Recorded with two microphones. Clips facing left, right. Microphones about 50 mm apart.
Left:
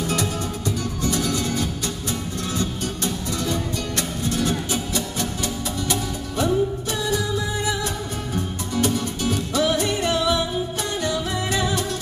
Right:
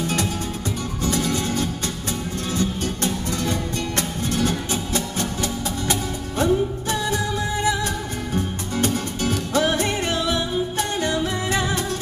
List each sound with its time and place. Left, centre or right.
0.1 s music: right
8.7 s music: right